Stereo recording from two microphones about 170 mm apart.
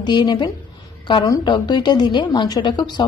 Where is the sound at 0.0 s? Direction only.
25° left (ahead or behind).